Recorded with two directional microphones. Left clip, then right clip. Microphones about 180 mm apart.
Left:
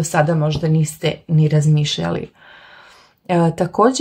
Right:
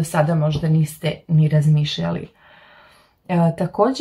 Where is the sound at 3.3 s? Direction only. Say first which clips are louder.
Left 4 dB; 45° left (ahead or behind).